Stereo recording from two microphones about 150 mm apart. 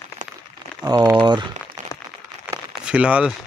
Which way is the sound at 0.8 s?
25° right (ahead or behind).